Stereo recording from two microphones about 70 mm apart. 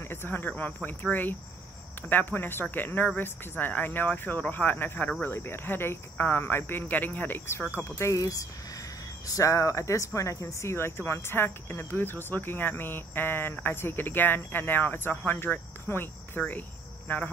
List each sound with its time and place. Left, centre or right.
0.0 s speech: left
7.9 s speech: left